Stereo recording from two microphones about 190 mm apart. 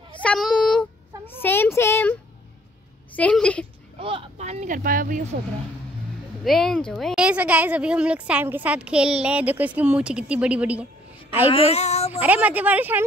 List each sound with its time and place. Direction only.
0.2 s child singing: 5° left (ahead or behind)
1.8 s a sound: 10° left (ahead or behind)
3.2 s a woman's voice: 5° left (ahead or behind)
4.0 s speech: 30° right (ahead or behind); by 5.4 s 45° right (ahead or behind)
6.4 s speech: centre (ahead or behind)
11.5 s speech: 30° left (ahead or behind)
12.2 s speech: 5° right (ahead or behind)